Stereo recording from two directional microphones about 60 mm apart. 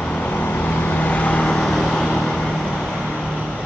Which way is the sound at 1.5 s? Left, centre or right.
Centre.